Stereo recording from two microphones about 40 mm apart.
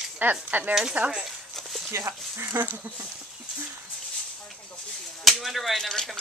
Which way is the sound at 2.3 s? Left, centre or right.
Right.